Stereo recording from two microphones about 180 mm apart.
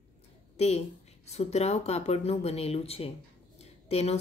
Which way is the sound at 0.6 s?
35° left (ahead or behind).